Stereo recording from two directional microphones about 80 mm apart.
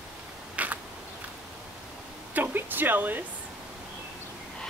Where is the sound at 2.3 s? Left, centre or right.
Right.